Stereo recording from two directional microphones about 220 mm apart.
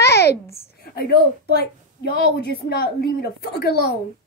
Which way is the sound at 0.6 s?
45° left (ahead or behind).